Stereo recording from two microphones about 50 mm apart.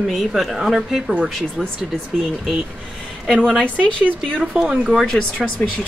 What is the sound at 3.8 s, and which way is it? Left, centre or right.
Speech, left.